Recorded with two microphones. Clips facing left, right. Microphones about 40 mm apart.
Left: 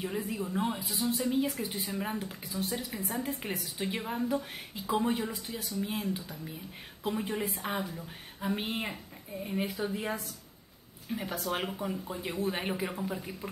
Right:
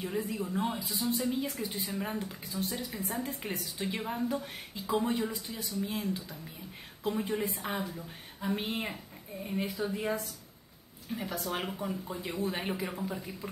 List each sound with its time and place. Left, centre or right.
0.0 s a woman's voice: centre